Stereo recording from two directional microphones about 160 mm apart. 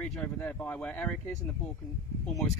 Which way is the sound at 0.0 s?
10° left (ahead or behind).